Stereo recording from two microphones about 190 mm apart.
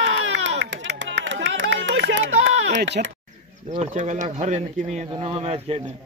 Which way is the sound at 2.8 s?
65° right (ahead or behind).